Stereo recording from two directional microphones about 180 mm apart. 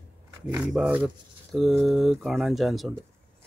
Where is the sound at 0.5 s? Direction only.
5° right (ahead or behind).